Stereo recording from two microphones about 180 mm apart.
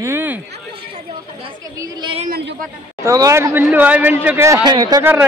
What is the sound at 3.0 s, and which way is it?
Speech, 20° right (ahead or behind).